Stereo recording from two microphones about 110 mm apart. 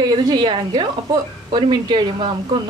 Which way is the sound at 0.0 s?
40° right (ahead or behind).